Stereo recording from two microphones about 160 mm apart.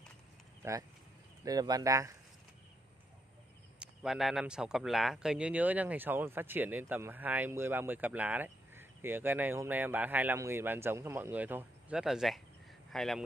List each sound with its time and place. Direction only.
0.6 s speech: 15° right (ahead or behind)
3.8 s speech: centre (ahead or behind)